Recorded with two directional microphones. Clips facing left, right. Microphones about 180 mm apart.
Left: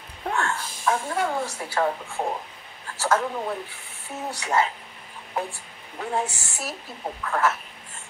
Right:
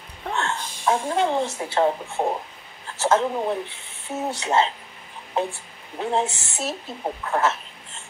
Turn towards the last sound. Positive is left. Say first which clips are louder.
# right 1 dB
turn(degrees=-25)  # may be behind; listen again after turning